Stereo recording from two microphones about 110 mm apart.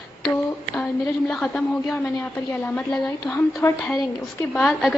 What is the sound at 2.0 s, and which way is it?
Speech, 20° left (ahead or behind).